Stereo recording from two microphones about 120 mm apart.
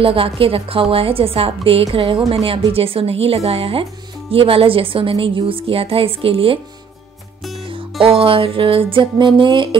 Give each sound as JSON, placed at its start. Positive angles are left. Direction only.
{"t": 0.0, "sound": "a woman's voice", "side_deg": -50}
{"t": 8.0, "sound": "a woman's voice", "side_deg": -50}